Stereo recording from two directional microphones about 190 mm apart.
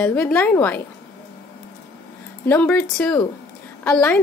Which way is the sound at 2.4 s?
10° left (ahead or behind).